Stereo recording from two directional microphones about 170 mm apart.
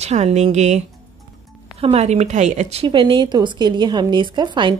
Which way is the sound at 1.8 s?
40° right (ahead or behind).